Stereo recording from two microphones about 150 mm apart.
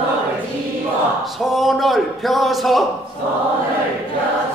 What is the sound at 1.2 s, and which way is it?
Speech, centre (ahead or behind).